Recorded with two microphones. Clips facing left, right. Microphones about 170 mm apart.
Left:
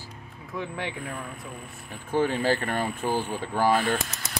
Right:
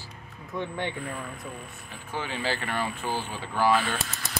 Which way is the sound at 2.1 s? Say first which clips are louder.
Left 7 dB; 50° left (ahead or behind).